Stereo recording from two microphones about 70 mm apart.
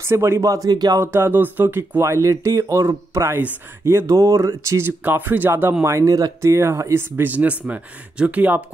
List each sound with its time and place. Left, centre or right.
0.0 s speech: right
0.7 s speech: right
0.9 s speech: right
5.0 s speech: right
6.0 s speech: right